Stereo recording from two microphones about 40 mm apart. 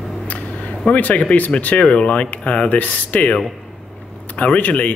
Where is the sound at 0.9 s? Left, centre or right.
Left.